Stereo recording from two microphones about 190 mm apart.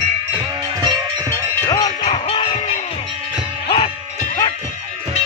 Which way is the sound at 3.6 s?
30° left (ahead or behind).